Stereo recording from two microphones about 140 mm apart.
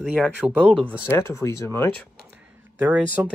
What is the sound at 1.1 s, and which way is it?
Speech, 20° left (ahead or behind).